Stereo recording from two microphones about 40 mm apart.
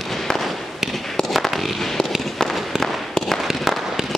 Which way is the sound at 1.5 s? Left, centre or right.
Centre.